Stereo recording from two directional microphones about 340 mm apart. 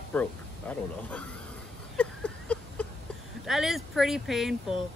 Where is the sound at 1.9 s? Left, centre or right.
Centre.